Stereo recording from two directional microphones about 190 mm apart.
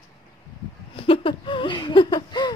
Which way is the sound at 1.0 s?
30° left (ahead or behind).